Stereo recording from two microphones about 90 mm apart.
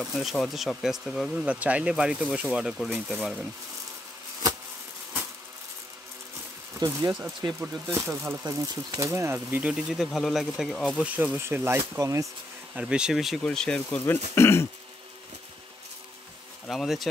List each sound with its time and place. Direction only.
0.0 s speech: centre (ahead or behind)
2.4 s speech: 5° right (ahead or behind)
6.8 s speech: 55° right (ahead or behind)
7.6 s speech: 30° right (ahead or behind); by 9.0 s 45° right (ahead or behind)
9.0 s speech: 30° right (ahead or behind)
9.6 s speech: 10° right (ahead or behind)
11.0 s speech: 20° right (ahead or behind)
12.0 s speech: 35° right (ahead or behind)
12.7 s speech: 10° right (ahead or behind); by 14.0 s 10° left (ahead or behind)
14.0 s speech: 30° left (ahead or behind)
16.6 s speech: centre (ahead or behind)